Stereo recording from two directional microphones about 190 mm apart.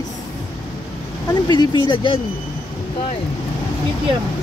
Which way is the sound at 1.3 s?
20° left (ahead or behind).